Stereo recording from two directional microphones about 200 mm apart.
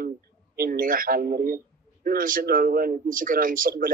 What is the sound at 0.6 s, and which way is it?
Speech, 45° right (ahead or behind).